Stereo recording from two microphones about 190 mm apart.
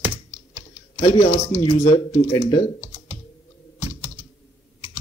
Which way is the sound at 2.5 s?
25° left (ahead or behind).